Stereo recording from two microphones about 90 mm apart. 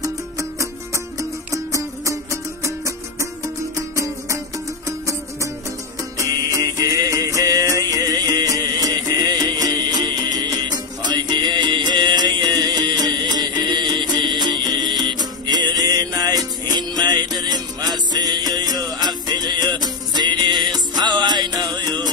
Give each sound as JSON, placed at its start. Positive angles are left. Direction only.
{"t": 0.0, "sound": "music", "side_deg": -35}